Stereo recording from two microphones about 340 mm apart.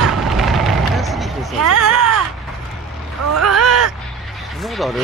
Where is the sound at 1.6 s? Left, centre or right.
Right.